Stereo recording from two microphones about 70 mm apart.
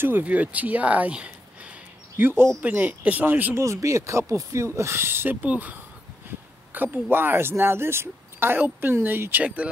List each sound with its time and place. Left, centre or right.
0.0 s speech: right
2.1 s speech: right
3.5 s speech: right